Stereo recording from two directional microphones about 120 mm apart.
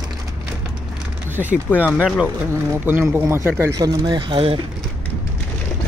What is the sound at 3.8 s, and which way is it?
Speech, 40° right (ahead or behind).